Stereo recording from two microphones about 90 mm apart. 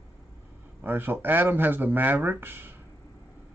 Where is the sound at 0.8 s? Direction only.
25° right (ahead or behind).